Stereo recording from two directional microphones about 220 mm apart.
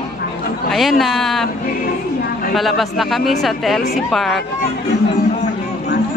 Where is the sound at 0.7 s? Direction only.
Centre (ahead or behind).